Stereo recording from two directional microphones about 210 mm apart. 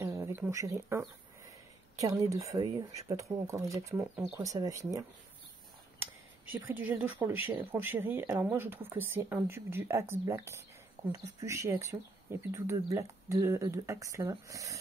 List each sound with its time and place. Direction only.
0.0 s speech: 15° right (ahead or behind)
6.9 s speech: 10° right (ahead or behind)